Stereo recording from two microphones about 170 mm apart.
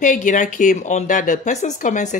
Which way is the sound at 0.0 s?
50° left (ahead or behind).